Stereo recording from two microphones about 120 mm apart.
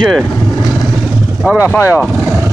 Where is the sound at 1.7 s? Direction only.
25° left (ahead or behind).